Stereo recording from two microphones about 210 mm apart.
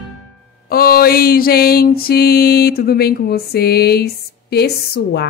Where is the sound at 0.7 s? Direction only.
45° left (ahead or behind).